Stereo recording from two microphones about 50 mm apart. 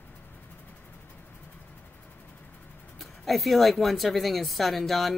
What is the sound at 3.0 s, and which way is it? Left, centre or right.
Speech, centre.